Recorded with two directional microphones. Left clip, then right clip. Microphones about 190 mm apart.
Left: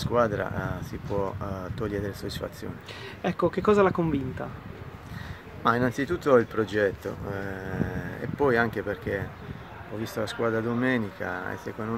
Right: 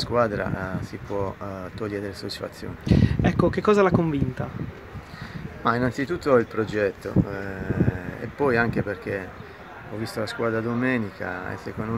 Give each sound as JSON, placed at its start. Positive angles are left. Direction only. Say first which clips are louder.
{"t": 0.1, "sound": "speech", "louder": "right 1 dB", "side_deg": 5}
{"t": 5.6, "sound": "speech", "louder": "right 1 dB", "side_deg": 5}